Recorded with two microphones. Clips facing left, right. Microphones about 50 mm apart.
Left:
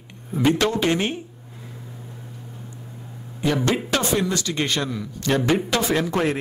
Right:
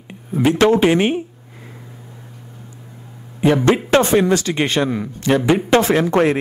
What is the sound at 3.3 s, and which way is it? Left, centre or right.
A man's voice, right.